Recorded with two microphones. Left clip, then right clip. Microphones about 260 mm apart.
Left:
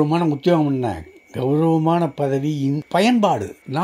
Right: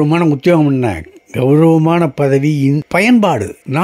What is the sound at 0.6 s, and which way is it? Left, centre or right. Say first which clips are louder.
Speech: right 7 dB; right.